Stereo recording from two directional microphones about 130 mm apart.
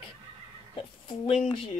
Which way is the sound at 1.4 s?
45° left (ahead or behind).